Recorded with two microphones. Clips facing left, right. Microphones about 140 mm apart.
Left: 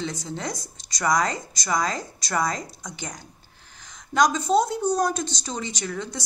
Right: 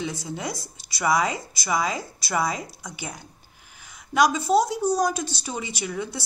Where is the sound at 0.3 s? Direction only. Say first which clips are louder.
Even; 10° right (ahead or behind).